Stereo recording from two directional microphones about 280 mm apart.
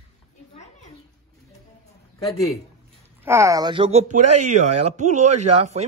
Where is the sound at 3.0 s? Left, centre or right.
Centre.